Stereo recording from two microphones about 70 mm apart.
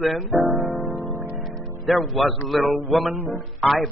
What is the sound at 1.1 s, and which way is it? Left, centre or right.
Music, right.